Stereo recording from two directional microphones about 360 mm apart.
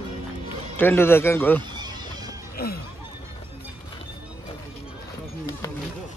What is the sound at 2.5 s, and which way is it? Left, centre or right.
Music, left.